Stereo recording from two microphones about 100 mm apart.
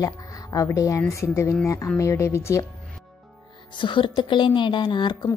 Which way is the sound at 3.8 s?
55° left (ahead or behind).